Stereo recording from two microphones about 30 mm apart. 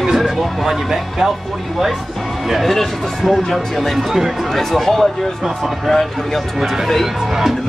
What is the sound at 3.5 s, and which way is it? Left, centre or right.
Speech, centre.